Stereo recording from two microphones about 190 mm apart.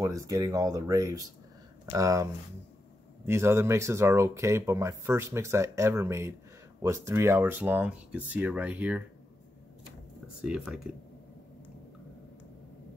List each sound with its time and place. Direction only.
0.0 s speech: 15° right (ahead or behind)
3.3 s speech: 15° right (ahead or behind)
10.4 s speech: 5° right (ahead or behind)